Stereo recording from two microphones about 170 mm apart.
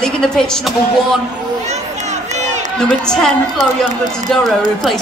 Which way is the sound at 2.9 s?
5° left (ahead or behind).